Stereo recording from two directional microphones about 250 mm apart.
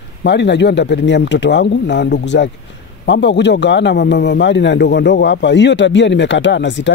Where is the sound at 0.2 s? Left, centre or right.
Left.